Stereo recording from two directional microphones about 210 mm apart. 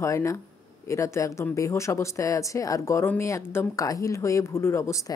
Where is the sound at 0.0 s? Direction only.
15° left (ahead or behind).